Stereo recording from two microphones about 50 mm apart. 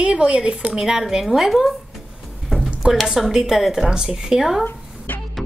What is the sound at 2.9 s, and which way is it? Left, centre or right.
A woman's voice, centre.